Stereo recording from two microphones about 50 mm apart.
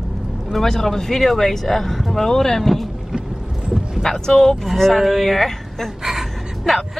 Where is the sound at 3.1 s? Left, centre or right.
Centre.